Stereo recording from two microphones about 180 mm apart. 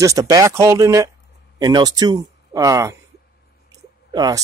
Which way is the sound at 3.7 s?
20° right (ahead or behind).